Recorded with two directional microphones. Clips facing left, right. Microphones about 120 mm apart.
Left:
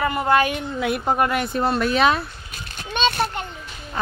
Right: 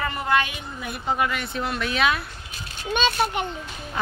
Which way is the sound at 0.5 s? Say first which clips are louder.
Left 10 dB; 70° left (ahead or behind).